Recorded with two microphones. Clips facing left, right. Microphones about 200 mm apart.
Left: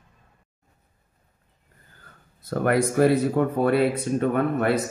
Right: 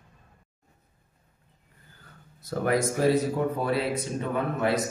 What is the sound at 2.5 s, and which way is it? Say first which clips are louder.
Speech: left 4 dB; 60° left (ahead or behind).